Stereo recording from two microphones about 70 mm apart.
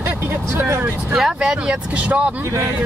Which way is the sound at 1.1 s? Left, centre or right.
Centre.